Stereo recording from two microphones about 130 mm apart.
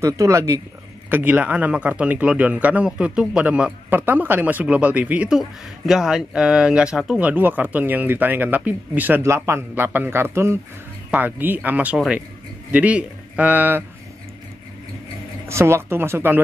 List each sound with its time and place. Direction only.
0.0 s a woman's voice: 25° right (ahead or behind)
1.1 s a man's voice: 10° right (ahead or behind)
15.4 s a woman's voice: 20° right (ahead or behind)